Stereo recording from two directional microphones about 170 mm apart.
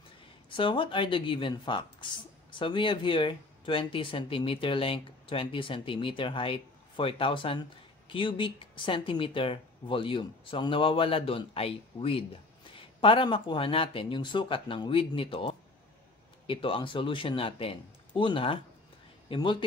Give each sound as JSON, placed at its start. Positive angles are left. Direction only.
{"t": 0.5, "sound": "speech", "side_deg": 30}